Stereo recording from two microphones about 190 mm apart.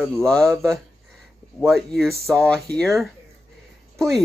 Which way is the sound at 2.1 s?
15° right (ahead or behind).